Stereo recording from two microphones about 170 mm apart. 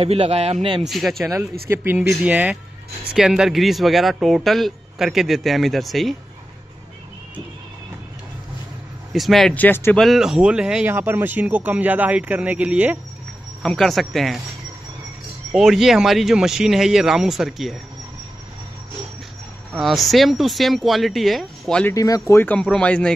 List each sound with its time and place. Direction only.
0.0 s a man's voice: 35° right (ahead or behind)
0.8 s speech: centre (ahead or behind)
1.7 s speech: 15° right (ahead or behind)
9.1 s speech: centre (ahead or behind)
9.9 s speech: centre (ahead or behind)
13.6 s speech: 5° left (ahead or behind)
15.5 s speech: centre (ahead or behind)
19.7 s speech: centre (ahead or behind)
21.9 s speech: 20° left (ahead or behind)
22.3 s speech: 10° left (ahead or behind)